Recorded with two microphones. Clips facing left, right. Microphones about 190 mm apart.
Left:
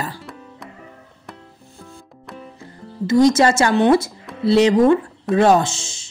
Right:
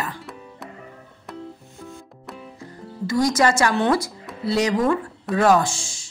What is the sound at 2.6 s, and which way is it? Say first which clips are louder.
Speech: left 3 dB; 25° left (ahead or behind).